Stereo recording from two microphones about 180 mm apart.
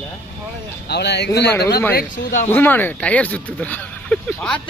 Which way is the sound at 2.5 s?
10° left (ahead or behind).